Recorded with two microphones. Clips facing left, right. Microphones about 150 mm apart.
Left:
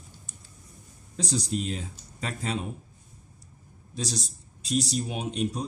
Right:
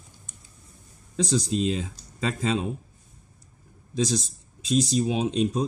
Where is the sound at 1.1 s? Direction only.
90° right.